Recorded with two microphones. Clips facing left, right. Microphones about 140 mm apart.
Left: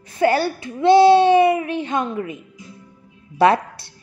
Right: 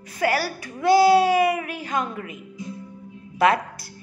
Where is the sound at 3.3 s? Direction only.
30° left (ahead or behind).